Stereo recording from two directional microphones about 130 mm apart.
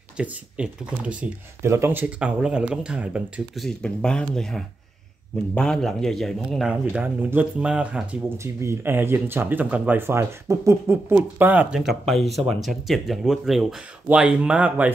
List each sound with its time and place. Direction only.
0.2 s speech: 10° right (ahead or behind)
1.6 s speech: 20° right (ahead or behind)
3.5 s speech: 5° left (ahead or behind)
6.7 s speech: 10° right (ahead or behind)
8.4 s speech: 20° right (ahead or behind)
11.8 s speech: centre (ahead or behind)